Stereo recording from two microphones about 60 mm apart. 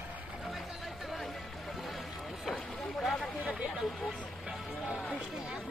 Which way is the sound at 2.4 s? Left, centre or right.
Centre.